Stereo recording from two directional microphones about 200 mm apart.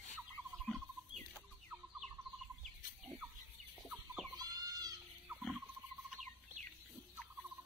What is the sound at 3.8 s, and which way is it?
Chicken, centre (ahead or behind).